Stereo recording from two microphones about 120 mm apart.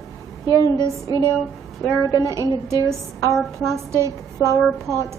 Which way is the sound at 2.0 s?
30° right (ahead or behind).